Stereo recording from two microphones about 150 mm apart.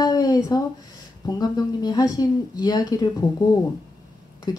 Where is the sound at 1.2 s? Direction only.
25° left (ahead or behind).